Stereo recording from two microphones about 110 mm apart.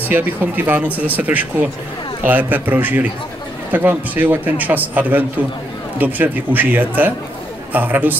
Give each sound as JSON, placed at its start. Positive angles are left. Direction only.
{"t": 0.1, "sound": "a man's voice", "side_deg": -15}